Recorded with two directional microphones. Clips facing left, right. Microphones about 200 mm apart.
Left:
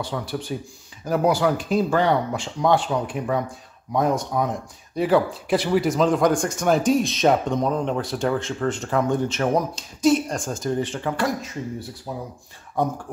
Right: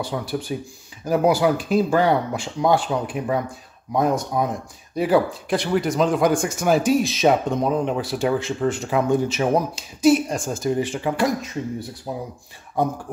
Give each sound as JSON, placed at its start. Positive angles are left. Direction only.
{"t": 0.0, "sound": "speech", "side_deg": -10}
{"t": 5.5, "sound": "speech", "side_deg": 5}